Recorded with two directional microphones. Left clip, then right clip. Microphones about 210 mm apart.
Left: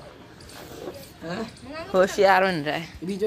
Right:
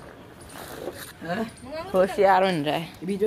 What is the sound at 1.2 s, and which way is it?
Speech, 40° right (ahead or behind).